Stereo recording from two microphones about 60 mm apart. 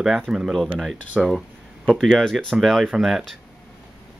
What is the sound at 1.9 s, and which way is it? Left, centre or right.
Speech, centre.